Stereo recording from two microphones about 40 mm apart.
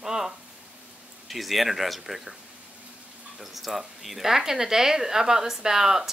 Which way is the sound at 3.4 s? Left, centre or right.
Centre.